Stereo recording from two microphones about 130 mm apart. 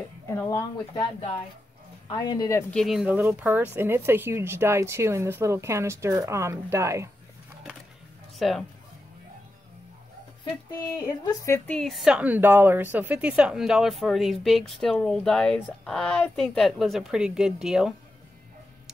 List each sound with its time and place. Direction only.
0.3 s speech: 20° left (ahead or behind)
2.0 s speech: 35° left (ahead or behind)
2.7 s a woman's voice: centre (ahead or behind)
3.1 s speech: 10° right (ahead or behind)
8.4 s a woman's voice: centre (ahead or behind)
11.2 s speech: 20° left (ahead or behind)
11.6 s a woman's voice: 5° left (ahead or behind)